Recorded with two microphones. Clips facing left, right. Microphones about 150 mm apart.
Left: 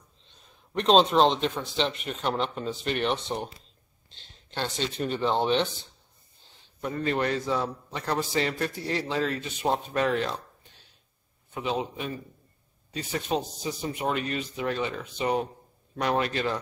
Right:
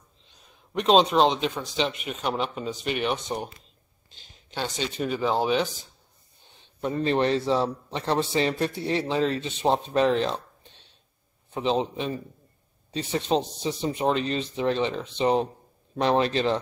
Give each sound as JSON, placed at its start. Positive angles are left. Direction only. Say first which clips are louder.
{"t": 0.7, "sound": "speech", "louder": "right 1 dB", "side_deg": -5}
{"t": 6.8, "sound": "a man's voice", "louder": "right 4 dB", "side_deg": -25}